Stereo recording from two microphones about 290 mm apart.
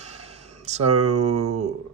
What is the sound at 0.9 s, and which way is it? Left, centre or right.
Speech, right.